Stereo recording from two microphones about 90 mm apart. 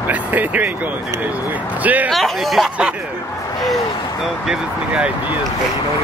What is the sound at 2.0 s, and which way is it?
Speech, centre (ahead or behind).